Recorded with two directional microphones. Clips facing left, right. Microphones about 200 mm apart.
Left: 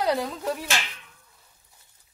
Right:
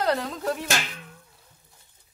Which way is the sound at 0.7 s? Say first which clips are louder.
Right 2 dB; 45° right (ahead or behind).